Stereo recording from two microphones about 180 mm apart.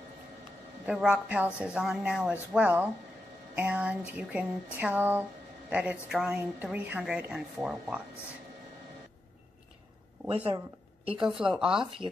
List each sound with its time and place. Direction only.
0.8 s speech: 5° right (ahead or behind)
2.5 s a sound: 10° right (ahead or behind)
6.1 s speech: 5° right (ahead or behind)
10.3 s speech: 30° right (ahead or behind)
11.2 s speech: 5° right (ahead or behind)